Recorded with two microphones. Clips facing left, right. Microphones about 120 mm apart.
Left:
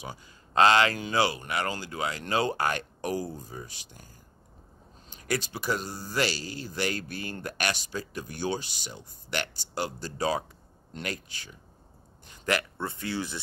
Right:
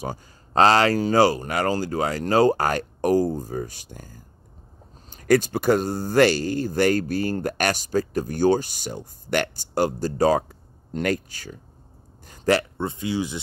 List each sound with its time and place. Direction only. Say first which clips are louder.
0.0 s speech: right 9 dB; 40° right (ahead or behind)
12.3 s a sound: right 8 dB; 35° right (ahead or behind)
12.7 s speech: right 7 dB; 20° right (ahead or behind)